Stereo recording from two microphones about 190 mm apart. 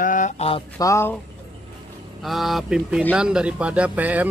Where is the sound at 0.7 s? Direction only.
15° left (ahead or behind).